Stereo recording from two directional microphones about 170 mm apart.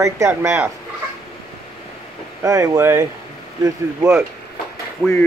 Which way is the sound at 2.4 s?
20° right (ahead or behind).